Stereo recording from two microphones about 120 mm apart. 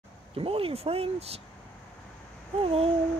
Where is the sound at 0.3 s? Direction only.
50° right (ahead or behind).